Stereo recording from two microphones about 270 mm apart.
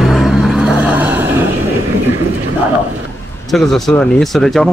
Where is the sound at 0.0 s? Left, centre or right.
Centre.